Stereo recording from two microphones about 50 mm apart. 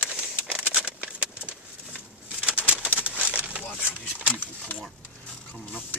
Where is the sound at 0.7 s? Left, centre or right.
Right.